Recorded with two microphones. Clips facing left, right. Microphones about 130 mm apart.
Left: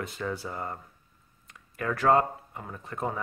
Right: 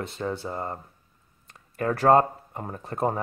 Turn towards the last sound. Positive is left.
turn(degrees=-35)  # may be behind; listen again after turning